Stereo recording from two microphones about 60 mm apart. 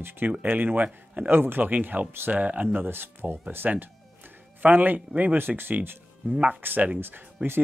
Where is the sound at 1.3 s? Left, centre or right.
Right.